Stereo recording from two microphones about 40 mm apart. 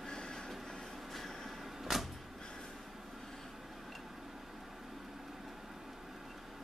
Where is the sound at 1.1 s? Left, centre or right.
Centre.